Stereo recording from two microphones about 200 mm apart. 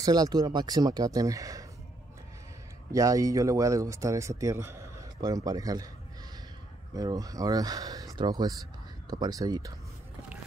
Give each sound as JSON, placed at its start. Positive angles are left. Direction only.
{"t": 0.0, "sound": "speech", "side_deg": -20}
{"t": 2.9, "sound": "speech", "side_deg": -15}
{"t": 6.9, "sound": "speech", "side_deg": -20}